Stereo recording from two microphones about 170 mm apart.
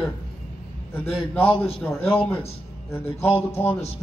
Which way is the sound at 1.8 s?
10° left (ahead or behind).